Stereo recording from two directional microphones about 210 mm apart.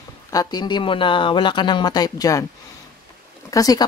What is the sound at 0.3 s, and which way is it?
Speech, 20° left (ahead or behind).